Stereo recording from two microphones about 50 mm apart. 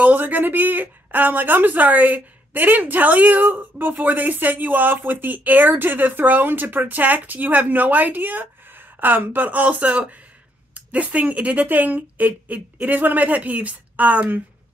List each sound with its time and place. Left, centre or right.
0.0 s a woman's voice: right